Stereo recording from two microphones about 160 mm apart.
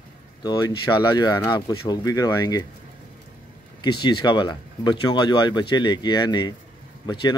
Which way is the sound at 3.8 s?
30° left (ahead or behind).